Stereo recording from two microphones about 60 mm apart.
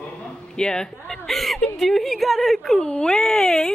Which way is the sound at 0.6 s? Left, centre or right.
Centre.